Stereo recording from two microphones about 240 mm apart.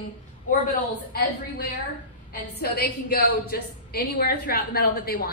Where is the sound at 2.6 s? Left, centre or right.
Left.